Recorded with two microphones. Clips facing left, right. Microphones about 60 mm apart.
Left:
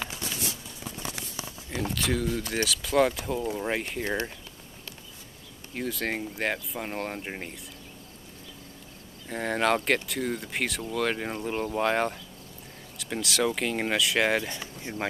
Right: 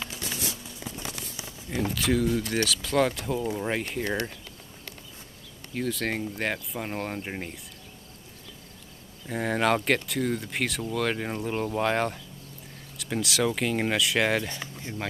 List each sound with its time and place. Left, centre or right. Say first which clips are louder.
1.7 s speech: right 3 dB; centre
5.8 s speech: right 2 dB; centre
9.3 s speech: right 1 dB; centre